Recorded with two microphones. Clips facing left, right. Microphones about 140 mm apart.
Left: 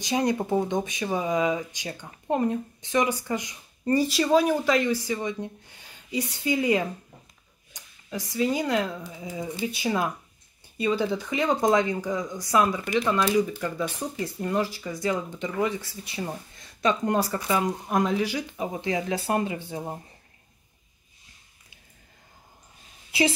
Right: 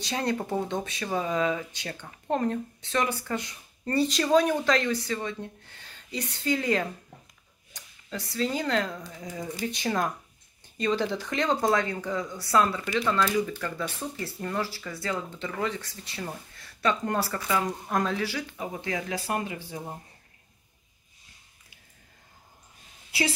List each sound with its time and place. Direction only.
0.0 s speech: 15° left (ahead or behind)
11.6 s speech: 20° left (ahead or behind)